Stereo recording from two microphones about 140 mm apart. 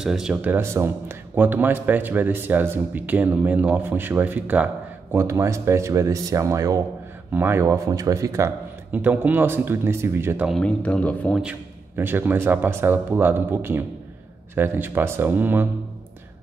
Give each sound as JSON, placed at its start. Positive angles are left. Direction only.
{"t": 0.0, "sound": "speech", "side_deg": -5}
{"t": 10.6, "sound": "speech", "side_deg": 10}
{"t": 11.4, "sound": "speech", "side_deg": -15}